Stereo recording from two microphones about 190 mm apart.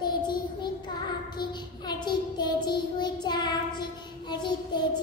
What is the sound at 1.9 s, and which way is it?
Child singing, 20° left (ahead or behind).